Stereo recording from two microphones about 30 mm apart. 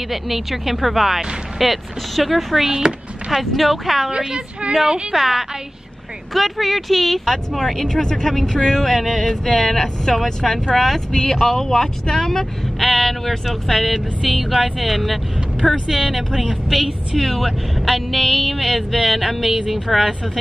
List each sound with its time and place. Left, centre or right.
0.1 s speech: centre
2.6 s speech: centre
3.5 s speech: centre
4.1 s a woman's voice: right
5.1 s a woman's voice: centre
6.3 s speech: centre
11.1 s speech: left; by 13.9 s centre
13.9 s speech: centre
16.1 s speech: centre